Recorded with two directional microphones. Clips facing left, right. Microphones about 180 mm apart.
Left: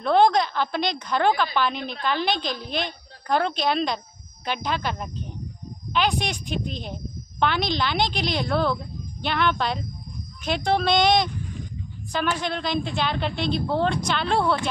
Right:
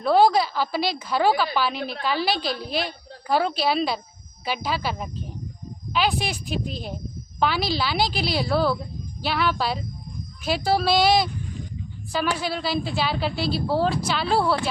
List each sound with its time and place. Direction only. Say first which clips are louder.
0.0 s a woman's voice: right 1 dB; 5° right (ahead or behind)